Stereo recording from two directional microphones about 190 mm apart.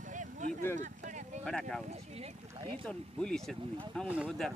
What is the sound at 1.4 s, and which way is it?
Speech, 5° left (ahead or behind).